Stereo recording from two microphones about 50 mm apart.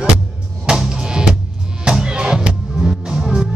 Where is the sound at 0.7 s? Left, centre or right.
Centre.